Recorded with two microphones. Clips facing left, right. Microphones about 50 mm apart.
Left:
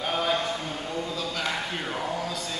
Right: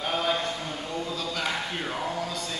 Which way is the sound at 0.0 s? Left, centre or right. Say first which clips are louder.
Left 1 dB; centre.